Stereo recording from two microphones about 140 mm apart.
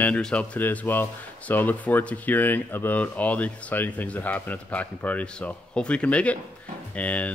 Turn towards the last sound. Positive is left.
turn(degrees=10)  # may be behind; listen again after turning